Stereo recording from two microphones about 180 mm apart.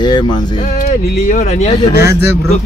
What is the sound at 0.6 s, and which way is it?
Speech, 50° left (ahead or behind).